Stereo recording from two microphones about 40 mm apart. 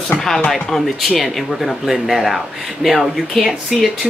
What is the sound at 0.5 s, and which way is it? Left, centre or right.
Speech, centre.